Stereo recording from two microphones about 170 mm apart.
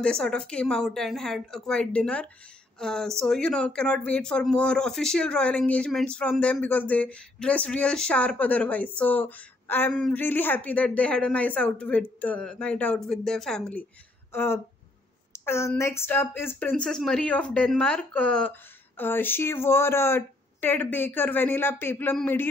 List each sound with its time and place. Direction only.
0.0 s speech: 5° left (ahead or behind)